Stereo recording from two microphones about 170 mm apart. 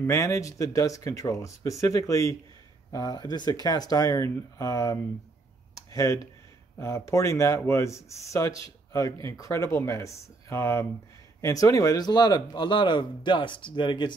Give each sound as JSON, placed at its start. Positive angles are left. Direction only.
{"t": 0.0, "sound": "speech", "side_deg": 15}
{"t": 5.9, "sound": "a sound", "side_deg": 20}
{"t": 6.8, "sound": "speech", "side_deg": 15}